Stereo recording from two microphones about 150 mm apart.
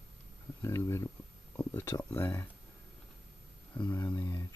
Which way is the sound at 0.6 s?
20° left (ahead or behind).